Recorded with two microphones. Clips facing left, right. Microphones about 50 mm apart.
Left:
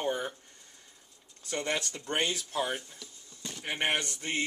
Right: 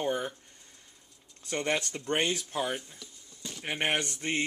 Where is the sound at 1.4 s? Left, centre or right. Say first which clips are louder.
Right 2 dB; right.